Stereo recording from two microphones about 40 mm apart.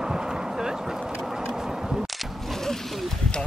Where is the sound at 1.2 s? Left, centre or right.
Centre.